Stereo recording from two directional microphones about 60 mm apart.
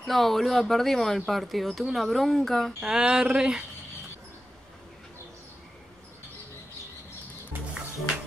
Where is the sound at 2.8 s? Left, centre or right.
Centre.